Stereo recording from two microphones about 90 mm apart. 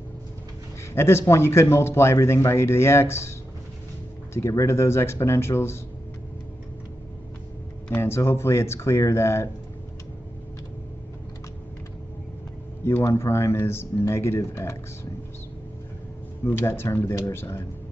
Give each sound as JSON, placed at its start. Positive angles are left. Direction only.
{"t": 0.9, "sound": "speech", "side_deg": 30}
{"t": 7.9, "sound": "speech", "side_deg": 30}
{"t": 12.8, "sound": "speech", "side_deg": 30}
{"t": 16.4, "sound": "speech", "side_deg": 25}